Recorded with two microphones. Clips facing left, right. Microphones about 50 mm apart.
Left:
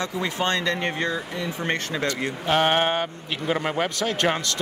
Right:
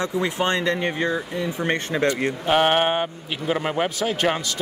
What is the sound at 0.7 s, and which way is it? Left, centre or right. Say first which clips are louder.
Speech: right 2 dB; centre.